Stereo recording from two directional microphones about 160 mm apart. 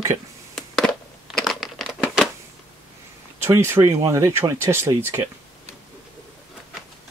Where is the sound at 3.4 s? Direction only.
15° right (ahead or behind).